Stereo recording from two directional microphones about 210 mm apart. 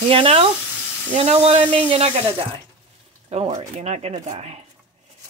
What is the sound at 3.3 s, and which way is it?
Speech, 30° right (ahead or behind).